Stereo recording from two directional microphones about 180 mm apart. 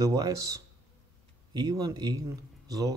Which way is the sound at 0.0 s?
20° right (ahead or behind).